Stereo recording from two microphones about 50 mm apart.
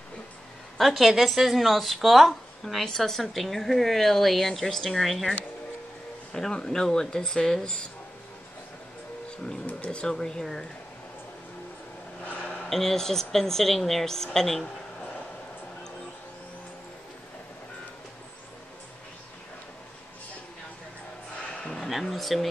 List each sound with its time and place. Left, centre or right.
0.7 s a woman's voice: centre
6.3 s a woman's voice: centre
9.8 s a woman's voice: centre
12.6 s a woman's voice: centre
21.7 s a sound: centre
22.1 s a woman's voice: centre